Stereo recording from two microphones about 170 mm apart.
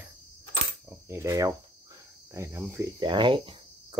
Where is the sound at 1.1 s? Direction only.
20° right (ahead or behind).